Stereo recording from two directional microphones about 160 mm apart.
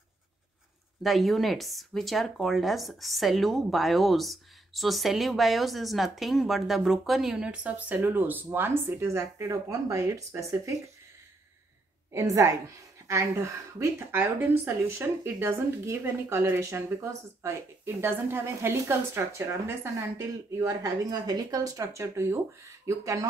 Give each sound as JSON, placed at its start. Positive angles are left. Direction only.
{"t": 1.0, "sound": "speech", "side_deg": 0}
{"t": 12.1, "sound": "a woman's voice", "side_deg": -20}